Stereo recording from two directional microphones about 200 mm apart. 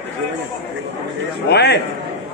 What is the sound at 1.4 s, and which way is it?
Speech, 55° left (ahead or behind).